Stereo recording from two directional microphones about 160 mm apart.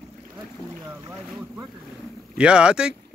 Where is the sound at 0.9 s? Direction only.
15° right (ahead or behind).